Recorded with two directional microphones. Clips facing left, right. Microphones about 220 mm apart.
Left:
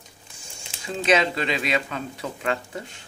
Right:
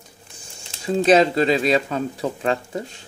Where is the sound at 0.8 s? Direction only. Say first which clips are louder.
Right 6 dB; 35° right (ahead or behind).